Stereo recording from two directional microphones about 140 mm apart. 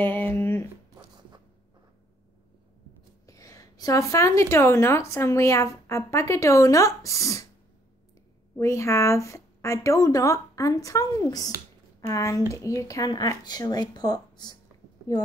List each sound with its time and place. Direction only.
0.0 s a sound: 15° left (ahead or behind)
3.3 s a woman's voice: 25° left (ahead or behind)
8.5 s a woman's voice: 20° left (ahead or behind)